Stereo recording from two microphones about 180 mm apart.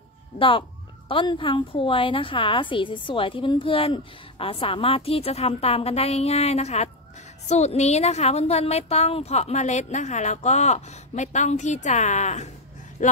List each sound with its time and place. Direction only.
0.4 s a woman's voice: 30° left (ahead or behind); by 13.1 s 45° left (ahead or behind)